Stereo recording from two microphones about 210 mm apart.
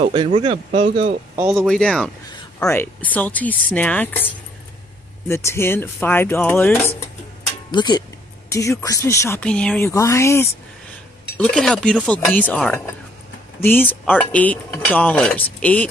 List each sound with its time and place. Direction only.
0.0 s speech: 30° right (ahead or behind)
1.5 s speech: centre (ahead or behind)
5.3 s speech: 10° left (ahead or behind)